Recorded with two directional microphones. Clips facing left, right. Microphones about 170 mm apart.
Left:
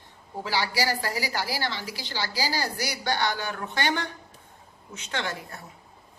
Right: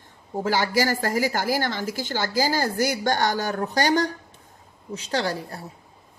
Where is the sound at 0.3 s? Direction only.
45° right (ahead or behind).